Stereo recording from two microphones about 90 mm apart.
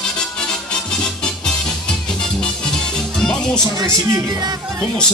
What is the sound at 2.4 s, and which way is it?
Music, 10° left (ahead or behind).